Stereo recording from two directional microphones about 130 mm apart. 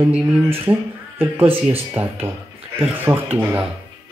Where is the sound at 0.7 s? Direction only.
15° right (ahead or behind).